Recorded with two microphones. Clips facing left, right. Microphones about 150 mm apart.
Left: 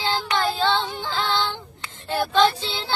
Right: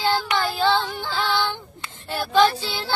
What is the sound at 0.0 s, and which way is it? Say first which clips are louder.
Child singing: right 1 dB; 20° left (ahead or behind).